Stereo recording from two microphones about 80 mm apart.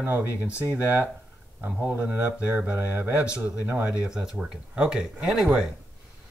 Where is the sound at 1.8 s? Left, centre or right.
Right; by 5.7 s centre.